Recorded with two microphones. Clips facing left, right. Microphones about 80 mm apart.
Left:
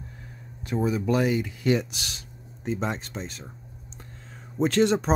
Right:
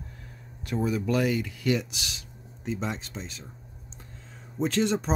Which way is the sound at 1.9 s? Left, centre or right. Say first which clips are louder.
Even; left.